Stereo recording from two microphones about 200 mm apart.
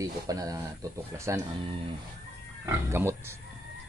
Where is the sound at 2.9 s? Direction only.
15° right (ahead or behind).